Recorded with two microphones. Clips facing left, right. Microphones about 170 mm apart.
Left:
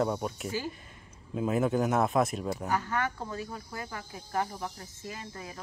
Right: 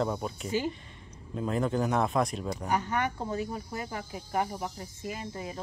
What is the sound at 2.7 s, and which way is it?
Speech, 20° right (ahead or behind).